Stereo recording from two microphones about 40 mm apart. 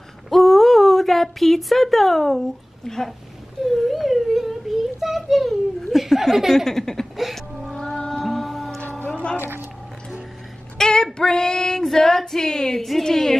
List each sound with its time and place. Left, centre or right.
0.3 s a sound: centre
3.6 s a sound: centre
6.5 s female singing: centre
7.2 s music: centre
7.7 s music: left
8.1 s music: centre
9.4 s squish: right
10.8 s female singing: centre